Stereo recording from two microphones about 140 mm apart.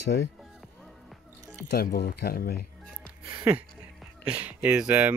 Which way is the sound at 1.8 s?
90° left.